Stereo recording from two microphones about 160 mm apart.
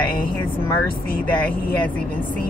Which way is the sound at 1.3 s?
10° left (ahead or behind).